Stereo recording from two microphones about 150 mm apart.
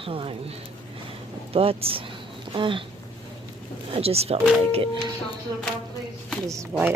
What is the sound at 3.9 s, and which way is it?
Speech, 40° right (ahead or behind).